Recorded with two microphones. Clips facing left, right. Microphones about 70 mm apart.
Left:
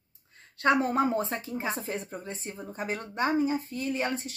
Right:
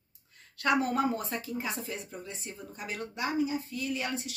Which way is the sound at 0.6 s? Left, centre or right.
Left.